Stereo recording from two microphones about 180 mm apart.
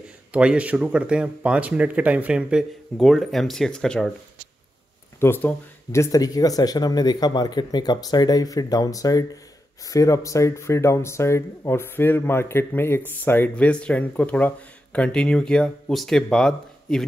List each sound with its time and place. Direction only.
0.3 s speech: 5° right (ahead or behind)
5.2 s speech: 10° left (ahead or behind)